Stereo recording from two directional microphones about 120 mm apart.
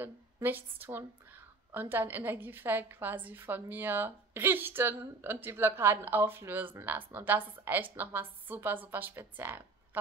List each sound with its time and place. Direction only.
0.0 s a woman's voice: 15° right (ahead or behind)